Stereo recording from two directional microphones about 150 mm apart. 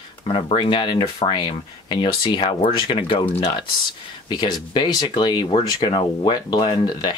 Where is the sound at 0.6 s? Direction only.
30° left (ahead or behind).